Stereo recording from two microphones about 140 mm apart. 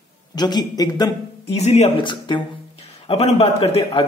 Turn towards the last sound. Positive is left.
turn(degrees=45)  # may be behind; listen again after turning